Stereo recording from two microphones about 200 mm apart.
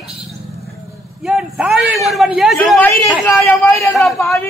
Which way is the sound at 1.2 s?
5° right (ahead or behind).